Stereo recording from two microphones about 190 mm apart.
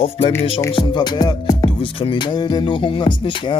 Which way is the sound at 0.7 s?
25° left (ahead or behind).